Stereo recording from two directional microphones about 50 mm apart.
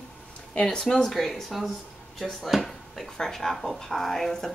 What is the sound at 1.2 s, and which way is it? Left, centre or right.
Speech, centre.